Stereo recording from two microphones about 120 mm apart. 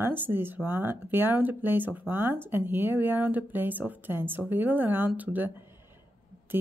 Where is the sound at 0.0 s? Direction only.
15° right (ahead or behind).